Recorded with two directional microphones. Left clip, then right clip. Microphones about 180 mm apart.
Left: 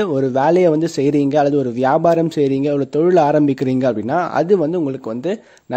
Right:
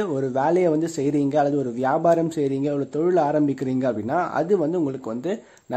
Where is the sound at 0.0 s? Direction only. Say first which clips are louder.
Left 7 dB; 30° left (ahead or behind).